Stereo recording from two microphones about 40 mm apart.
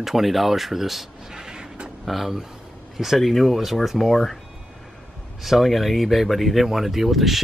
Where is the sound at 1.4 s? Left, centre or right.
Centre.